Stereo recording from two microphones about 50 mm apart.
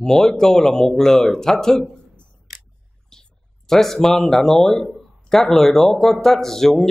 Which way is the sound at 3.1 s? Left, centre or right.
Centre.